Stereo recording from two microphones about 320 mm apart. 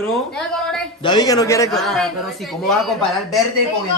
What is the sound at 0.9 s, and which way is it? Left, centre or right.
A man's voice, centre.